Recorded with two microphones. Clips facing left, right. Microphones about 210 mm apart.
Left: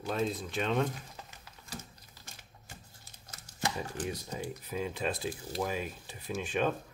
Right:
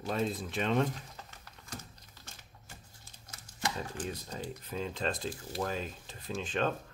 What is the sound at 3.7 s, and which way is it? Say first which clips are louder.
Speech: left 2 dB; 10° left (ahead or behind).